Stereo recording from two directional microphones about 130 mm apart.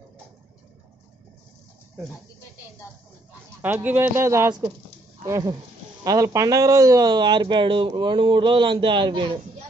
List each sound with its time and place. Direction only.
3.6 s speech: 15° right (ahead or behind); by 9.4 s 35° right (ahead or behind)